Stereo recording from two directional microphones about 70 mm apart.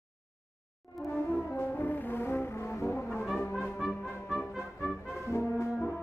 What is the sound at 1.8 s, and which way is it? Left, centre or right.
Brass instrument, left.